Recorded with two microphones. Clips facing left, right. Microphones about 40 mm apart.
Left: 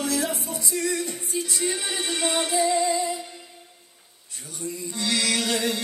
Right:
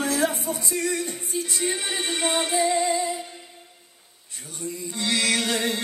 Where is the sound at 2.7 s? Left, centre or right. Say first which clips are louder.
Even; right.